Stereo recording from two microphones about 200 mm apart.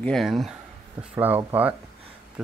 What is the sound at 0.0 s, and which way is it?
Speech, centre (ahead or behind).